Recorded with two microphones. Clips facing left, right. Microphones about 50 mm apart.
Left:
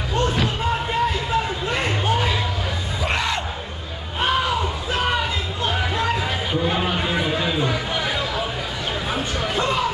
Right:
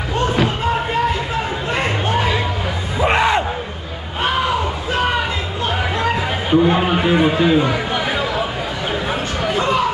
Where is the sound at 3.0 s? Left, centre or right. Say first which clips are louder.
Right 9 dB; right.